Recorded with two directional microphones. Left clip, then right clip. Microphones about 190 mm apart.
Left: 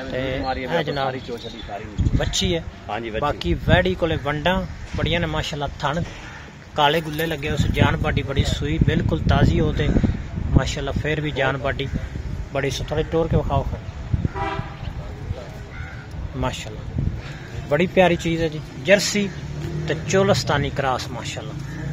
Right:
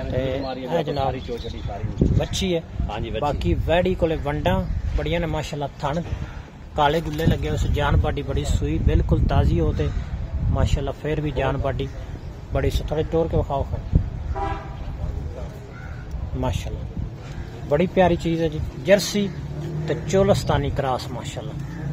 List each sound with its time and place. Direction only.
0.1 s a man's voice: 5° right (ahead or behind)
2.1 s speech: 5° right (ahead or behind)
2.9 s speech: 20° left (ahead or behind)
3.3 s speech: 5° right (ahead or behind)
16.3 s speech: 10° right (ahead or behind)
17.6 s speech: 10° right (ahead or behind)